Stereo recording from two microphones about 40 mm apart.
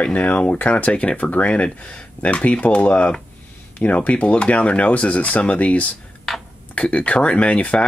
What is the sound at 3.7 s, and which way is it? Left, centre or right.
Speech, left.